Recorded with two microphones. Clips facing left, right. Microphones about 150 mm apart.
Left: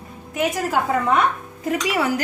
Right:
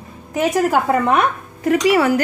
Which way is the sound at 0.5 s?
65° right (ahead or behind).